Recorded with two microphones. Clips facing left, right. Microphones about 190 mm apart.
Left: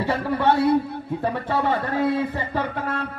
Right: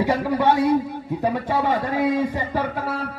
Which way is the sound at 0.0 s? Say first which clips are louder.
Right 2 dB; 10° right (ahead or behind).